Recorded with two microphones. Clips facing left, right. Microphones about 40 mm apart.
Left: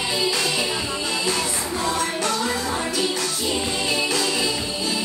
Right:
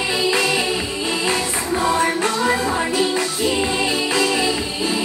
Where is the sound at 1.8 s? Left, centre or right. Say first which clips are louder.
Right 5 dB; right.